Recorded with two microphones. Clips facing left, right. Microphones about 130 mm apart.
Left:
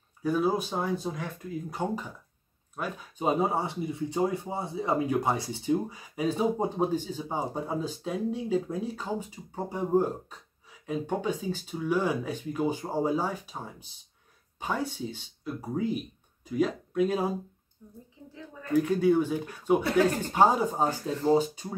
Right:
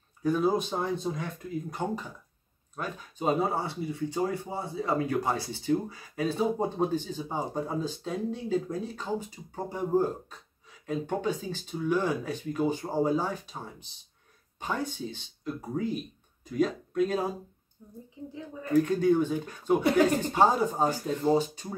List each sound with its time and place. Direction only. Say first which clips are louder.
0.2 s speech: right 1 dB; 5° left (ahead or behind)
18.3 s speech: right 3 dB; 15° right (ahead or behind)
18.7 s speech: even; 5° left (ahead or behind)
20.8 s speech: even; 15° right (ahead or behind)
21.3 s speech: left 2 dB; 10° left (ahead or behind)